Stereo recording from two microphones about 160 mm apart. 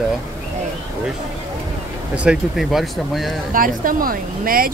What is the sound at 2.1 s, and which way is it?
Speech, 5° right (ahead or behind).